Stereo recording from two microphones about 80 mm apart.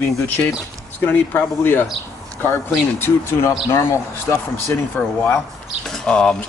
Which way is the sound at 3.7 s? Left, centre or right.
Left.